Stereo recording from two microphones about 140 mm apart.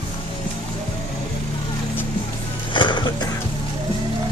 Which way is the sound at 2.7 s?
35° left (ahead or behind).